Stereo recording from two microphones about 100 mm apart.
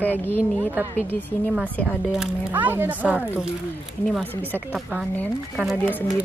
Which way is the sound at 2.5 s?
20° right (ahead or behind).